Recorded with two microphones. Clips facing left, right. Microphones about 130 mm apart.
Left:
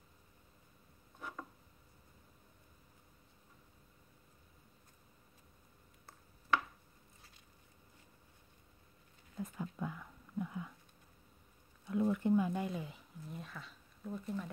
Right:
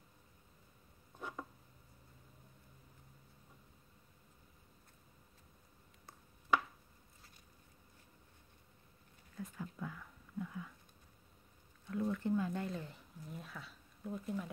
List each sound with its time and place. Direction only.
9.4 s whispering: 20° left (ahead or behind)
11.9 s speech: 15° left (ahead or behind); by 14.5 s 5° right (ahead or behind)